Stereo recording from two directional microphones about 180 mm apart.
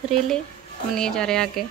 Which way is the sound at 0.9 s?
5° left (ahead or behind).